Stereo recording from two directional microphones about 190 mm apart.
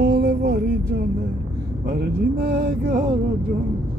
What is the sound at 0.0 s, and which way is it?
Music, 65° right (ahead or behind).